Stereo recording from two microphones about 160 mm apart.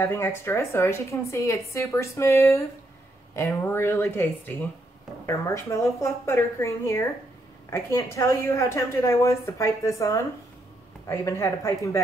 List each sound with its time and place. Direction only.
0.0 s a woman's voice: 15° left (ahead or behind)